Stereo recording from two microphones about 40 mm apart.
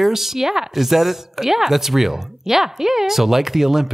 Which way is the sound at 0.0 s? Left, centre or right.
Centre.